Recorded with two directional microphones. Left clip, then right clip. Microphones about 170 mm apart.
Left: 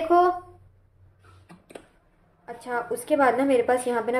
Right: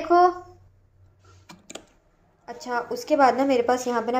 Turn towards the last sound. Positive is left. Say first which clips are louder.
# even
turn(degrees=-10)  # may be behind; listen again after turning